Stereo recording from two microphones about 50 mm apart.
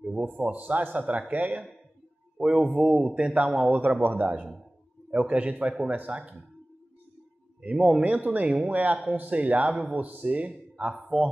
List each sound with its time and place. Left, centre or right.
0.4 s speech: right
2.3 s a man's voice: centre
3.8 s speech: right
5.1 s speech: right
7.7 s a man's voice: centre
8.0 s speech: right